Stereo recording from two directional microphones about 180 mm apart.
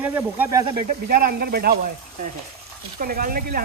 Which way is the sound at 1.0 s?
55° right (ahead or behind).